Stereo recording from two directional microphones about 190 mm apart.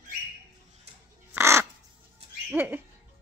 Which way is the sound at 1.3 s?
15° right (ahead or behind).